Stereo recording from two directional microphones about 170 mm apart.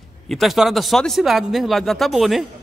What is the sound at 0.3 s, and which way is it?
Speech, centre (ahead or behind).